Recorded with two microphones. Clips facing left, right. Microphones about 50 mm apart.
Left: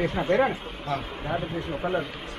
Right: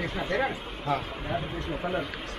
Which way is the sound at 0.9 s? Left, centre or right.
Centre.